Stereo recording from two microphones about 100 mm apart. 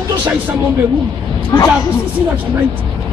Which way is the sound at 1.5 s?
35° left (ahead or behind).